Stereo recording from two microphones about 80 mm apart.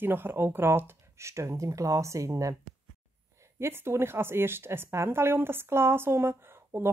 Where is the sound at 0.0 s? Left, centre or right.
Right.